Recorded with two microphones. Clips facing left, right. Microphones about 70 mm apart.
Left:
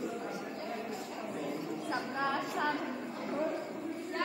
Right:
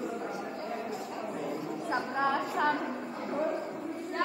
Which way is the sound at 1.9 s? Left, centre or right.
Right.